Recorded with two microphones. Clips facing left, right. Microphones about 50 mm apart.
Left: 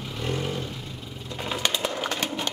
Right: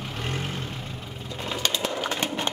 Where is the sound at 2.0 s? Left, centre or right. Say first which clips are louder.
Right 1 dB; centre.